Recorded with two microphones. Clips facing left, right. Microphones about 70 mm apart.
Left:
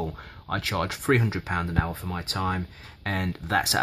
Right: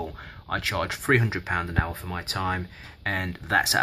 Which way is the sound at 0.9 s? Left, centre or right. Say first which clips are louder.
Right 1 dB; centre.